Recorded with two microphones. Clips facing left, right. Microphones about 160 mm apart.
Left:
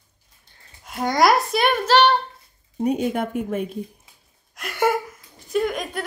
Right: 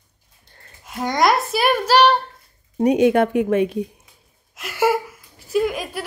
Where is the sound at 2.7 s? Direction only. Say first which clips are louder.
Right 7 dB; 90° right.